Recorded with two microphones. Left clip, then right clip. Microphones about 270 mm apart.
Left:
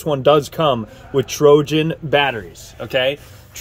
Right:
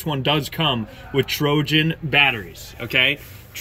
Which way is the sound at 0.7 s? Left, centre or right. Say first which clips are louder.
Left 3 dB; left.